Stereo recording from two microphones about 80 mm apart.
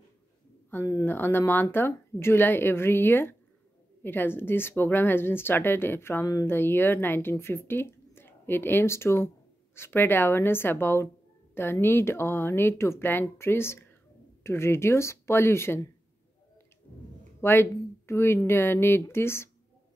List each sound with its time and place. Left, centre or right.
0.7 s a woman's voice: left
17.4 s speech: left